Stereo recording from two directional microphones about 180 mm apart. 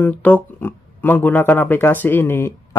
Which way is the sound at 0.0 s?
10° left (ahead or behind).